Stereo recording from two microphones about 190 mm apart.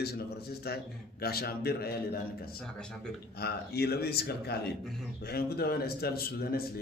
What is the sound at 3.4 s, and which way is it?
A man's voice, 55° left (ahead or behind).